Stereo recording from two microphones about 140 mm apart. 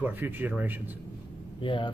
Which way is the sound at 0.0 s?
15° right (ahead or behind).